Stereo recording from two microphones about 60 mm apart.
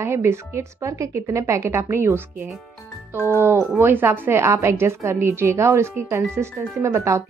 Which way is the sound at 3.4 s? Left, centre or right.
Right.